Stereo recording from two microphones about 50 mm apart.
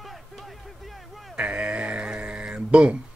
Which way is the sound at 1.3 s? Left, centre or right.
Right.